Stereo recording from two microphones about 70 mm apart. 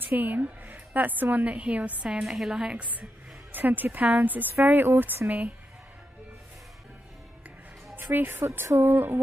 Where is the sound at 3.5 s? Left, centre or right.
Right.